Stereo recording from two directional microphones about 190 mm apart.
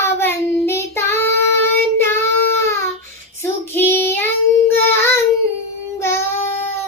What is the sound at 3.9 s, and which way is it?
Child singing, 10° left (ahead or behind).